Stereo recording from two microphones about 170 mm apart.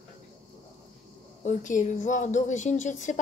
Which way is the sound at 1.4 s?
45° left (ahead or behind).